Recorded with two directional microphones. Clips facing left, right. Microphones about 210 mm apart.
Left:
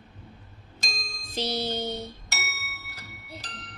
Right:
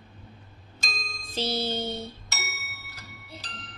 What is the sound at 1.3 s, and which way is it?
Music, 15° left (ahead or behind).